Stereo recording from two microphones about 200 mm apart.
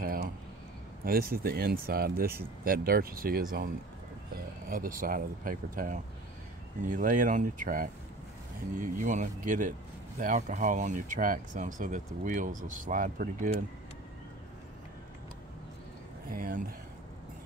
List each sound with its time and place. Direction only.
0.0 s a sound: 45° right (ahead or behind)
1.0 s speech: 50° right (ahead or behind)
16.3 s speech: 45° right (ahead or behind)